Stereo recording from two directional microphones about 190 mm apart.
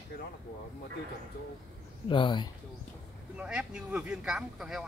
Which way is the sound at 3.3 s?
5° right (ahead or behind).